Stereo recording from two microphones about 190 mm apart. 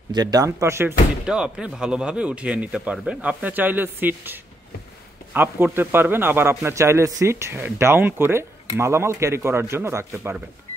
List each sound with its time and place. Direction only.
0.1 s a man's voice: 20° right (ahead or behind)